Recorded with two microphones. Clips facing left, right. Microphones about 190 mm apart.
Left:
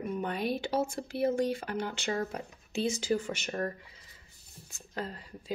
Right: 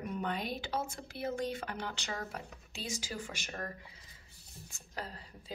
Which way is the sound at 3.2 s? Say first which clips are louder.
Left 9 dB; 35° left (ahead or behind).